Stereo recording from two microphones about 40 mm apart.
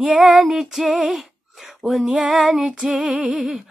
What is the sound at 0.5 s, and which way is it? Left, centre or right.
Female singing, centre.